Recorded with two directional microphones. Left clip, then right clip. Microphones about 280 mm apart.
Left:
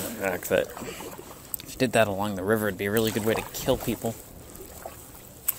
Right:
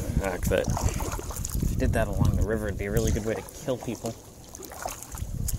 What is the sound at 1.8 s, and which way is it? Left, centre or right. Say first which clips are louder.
Speech: left 6 dB; centre.